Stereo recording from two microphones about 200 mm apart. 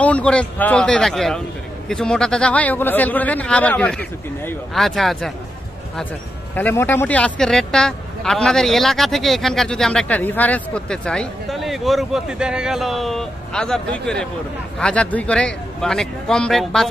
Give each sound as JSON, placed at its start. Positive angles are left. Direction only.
{"t": 0.0, "sound": "a man's voice", "side_deg": 5}
{"t": 6.5, "sound": "a man's voice", "side_deg": 10}